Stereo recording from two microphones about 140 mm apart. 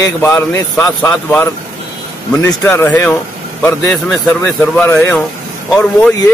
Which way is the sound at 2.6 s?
15° left (ahead or behind).